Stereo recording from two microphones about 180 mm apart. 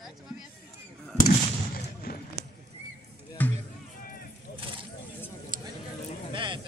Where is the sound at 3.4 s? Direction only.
10° left (ahead or behind).